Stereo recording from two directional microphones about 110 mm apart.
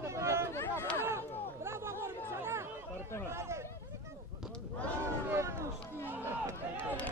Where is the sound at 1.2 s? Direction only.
20° left (ahead or behind).